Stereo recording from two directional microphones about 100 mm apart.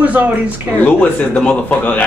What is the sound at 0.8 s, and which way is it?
Speech, 15° left (ahead or behind).